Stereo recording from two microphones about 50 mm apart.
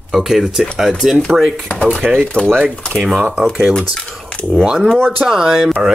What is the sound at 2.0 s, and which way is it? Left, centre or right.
Speech, centre.